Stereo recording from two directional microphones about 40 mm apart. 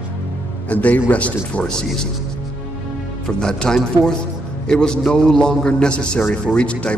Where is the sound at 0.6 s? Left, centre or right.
Left.